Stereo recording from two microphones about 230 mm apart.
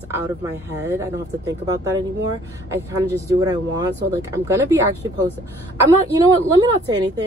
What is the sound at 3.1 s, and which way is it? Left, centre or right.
Speech, centre.